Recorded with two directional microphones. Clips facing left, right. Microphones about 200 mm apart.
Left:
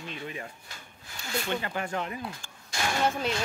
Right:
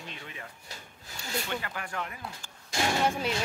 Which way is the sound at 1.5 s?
25° left (ahead or behind).